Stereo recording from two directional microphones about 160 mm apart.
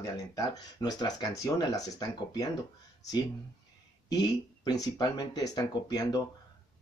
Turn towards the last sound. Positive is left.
turn(degrees=25)  # may be behind; listen again after turning